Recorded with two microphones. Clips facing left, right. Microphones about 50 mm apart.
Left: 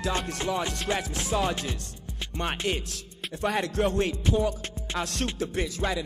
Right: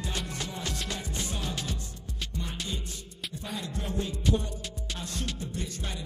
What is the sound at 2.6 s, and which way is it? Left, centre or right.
Music, left.